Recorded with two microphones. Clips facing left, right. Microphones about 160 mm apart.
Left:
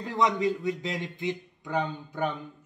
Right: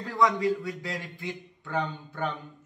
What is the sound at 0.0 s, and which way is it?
Speech, 20° left (ahead or behind).